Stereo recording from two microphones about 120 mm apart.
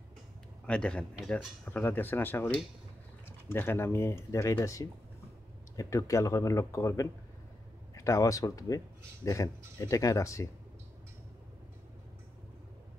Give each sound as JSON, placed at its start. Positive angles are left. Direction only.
{"t": 0.7, "sound": "speech", "side_deg": 10}